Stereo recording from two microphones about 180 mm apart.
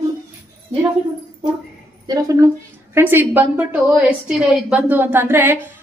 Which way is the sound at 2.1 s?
20° right (ahead or behind).